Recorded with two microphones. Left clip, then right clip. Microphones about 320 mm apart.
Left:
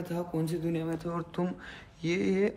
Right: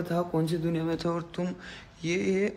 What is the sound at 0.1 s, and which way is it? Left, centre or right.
Speech, centre.